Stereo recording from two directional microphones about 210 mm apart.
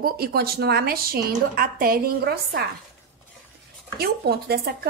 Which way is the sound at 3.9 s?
50° right (ahead or behind).